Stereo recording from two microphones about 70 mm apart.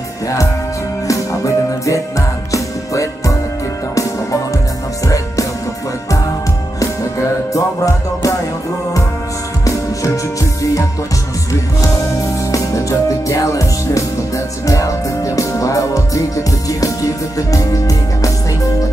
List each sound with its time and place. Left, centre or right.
1.0 s music: left
6.8 s music: left
9.7 s music: left